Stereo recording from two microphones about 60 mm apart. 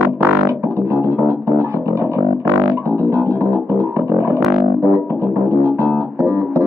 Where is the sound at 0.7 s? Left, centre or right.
Right.